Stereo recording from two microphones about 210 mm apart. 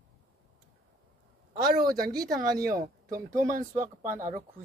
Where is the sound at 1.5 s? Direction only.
45° right (ahead or behind).